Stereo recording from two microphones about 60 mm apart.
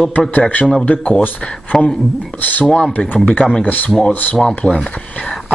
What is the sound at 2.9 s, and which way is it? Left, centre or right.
Speech, left.